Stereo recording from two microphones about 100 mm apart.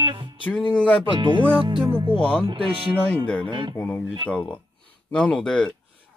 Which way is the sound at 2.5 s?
65° right (ahead or behind).